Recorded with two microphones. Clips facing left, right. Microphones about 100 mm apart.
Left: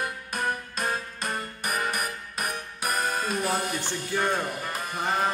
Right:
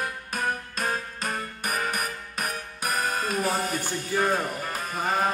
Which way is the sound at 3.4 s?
45° right (ahead or behind).